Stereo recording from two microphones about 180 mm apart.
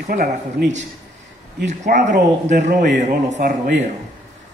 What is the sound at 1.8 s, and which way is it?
A man's voice, 40° right (ahead or behind).